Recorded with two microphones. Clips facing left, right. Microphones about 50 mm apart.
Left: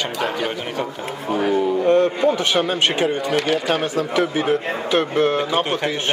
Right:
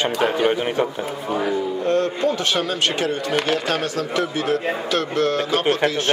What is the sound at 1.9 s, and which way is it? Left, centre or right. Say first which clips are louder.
A man's voice: left 3 dB; centre.